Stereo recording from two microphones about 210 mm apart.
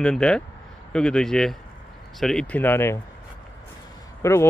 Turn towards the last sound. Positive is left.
turn(degrees=10)  # may be behind; listen again after turning